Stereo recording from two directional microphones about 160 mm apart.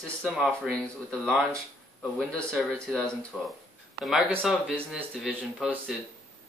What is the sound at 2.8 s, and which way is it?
Speech, 5° left (ahead or behind).